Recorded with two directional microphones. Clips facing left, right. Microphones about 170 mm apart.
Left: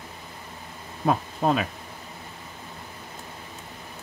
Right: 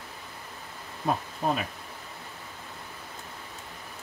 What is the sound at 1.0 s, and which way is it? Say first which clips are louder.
Speech: left 5 dB; 90° left.